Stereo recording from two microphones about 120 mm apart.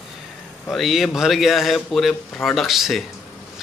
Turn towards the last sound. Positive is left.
turn(degrees=0)  # may be behind; listen again after turning